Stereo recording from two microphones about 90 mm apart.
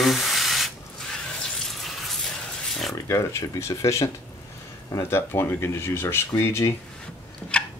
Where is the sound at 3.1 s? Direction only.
35° left (ahead or behind).